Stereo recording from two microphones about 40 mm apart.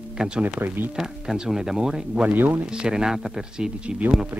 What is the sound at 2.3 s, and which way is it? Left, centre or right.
Speech, right.